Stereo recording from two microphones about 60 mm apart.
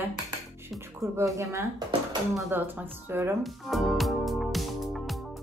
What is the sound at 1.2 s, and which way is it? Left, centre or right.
Speech, right.